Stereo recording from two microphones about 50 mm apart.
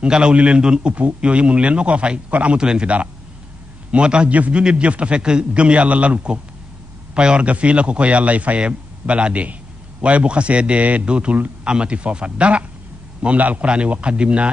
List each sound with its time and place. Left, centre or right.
0.0 s a man's voice: right